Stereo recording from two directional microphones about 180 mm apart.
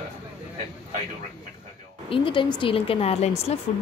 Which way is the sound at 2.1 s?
30° left (ahead or behind).